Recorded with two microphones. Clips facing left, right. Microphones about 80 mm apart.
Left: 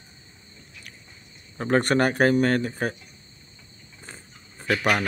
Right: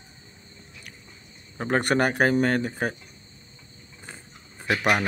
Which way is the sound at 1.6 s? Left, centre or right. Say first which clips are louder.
Left 2 dB; centre.